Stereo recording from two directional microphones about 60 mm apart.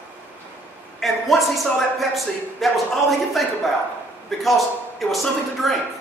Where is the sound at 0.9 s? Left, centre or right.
Centre.